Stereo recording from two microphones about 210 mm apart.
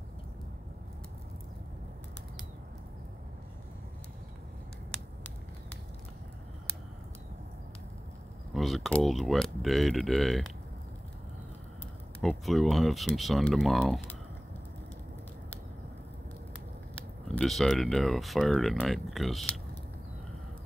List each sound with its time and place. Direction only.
8.5 s speech: centre (ahead or behind)
12.2 s speech: centre (ahead or behind)
16.9 s speech: 5° left (ahead or behind)